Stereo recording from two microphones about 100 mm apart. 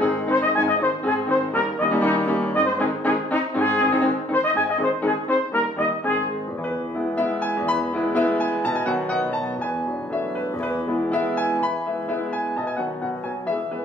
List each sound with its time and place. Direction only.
0.0 s brass instrument: 15° left (ahead or behind)
5.0 s trumpet: 20° left (ahead or behind)
7.2 s music: 15° left (ahead or behind)
10.9 s music: 15° left (ahead or behind)